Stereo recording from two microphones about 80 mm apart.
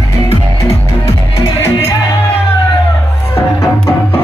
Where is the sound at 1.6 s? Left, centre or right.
Left.